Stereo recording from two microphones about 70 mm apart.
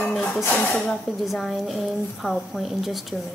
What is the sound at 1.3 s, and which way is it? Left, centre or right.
A woman's voice, centre.